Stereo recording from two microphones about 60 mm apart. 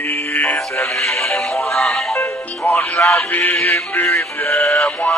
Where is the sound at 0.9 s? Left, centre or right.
Centre.